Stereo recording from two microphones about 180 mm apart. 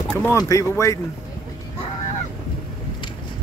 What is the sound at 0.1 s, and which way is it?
Speech, 15° left (ahead or behind).